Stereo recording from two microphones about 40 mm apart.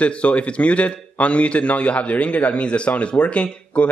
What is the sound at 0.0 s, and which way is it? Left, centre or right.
A man's voice, left.